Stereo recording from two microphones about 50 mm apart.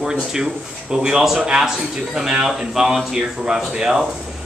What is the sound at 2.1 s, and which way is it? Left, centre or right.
Speech, centre.